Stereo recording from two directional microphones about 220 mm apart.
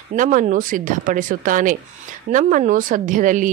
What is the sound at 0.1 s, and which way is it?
A woman's voice, 35° right (ahead or behind).